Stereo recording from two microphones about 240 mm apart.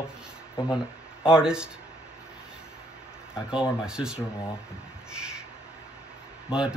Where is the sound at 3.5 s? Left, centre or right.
Centre.